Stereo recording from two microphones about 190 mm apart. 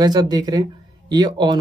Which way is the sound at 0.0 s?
20° right (ahead or behind).